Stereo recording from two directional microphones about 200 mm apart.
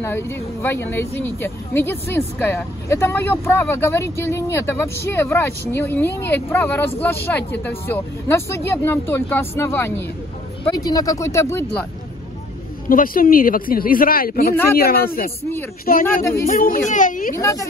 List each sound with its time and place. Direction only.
0.0 s speech: 10° left (ahead or behind)
12.8 s a man's voice: 45° left (ahead or behind)
17.4 s speech: 15° left (ahead or behind)